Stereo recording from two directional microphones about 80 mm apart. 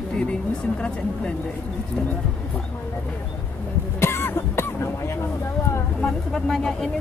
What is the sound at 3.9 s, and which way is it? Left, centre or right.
Cough, left.